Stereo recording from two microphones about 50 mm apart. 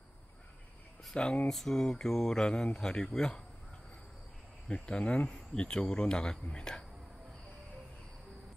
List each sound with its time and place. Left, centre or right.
1.1 s speech: centre
1.5 s speech: centre
4.6 s speech: centre